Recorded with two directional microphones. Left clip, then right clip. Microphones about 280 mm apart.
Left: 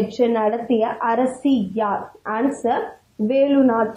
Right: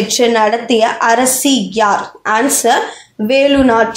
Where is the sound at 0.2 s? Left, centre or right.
Right.